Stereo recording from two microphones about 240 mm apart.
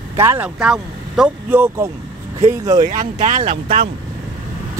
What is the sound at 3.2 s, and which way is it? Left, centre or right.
Speech, right.